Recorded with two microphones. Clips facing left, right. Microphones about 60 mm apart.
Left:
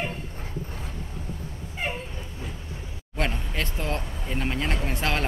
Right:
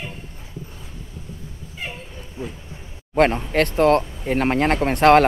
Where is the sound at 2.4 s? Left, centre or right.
Right.